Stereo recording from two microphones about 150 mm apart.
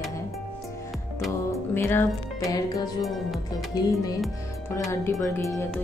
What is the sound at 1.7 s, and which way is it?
Speech, 15° left (ahead or behind).